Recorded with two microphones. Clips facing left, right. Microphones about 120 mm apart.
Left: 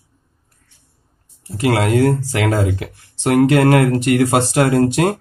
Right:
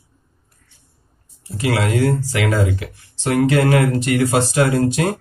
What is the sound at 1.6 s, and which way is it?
Speech, 45° left (ahead or behind).